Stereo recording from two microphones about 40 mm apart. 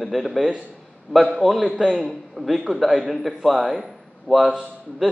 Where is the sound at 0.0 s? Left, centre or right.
Centre.